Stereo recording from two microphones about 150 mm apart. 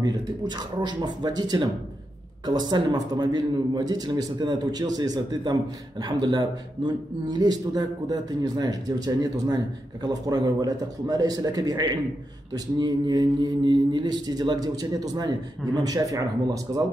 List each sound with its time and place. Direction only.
0.0 s a man's voice: 25° right (ahead or behind)